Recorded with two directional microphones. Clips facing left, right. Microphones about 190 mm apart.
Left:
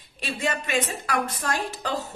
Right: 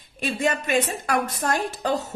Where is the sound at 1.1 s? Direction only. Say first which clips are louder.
Right 3 dB; 45° right (ahead or behind).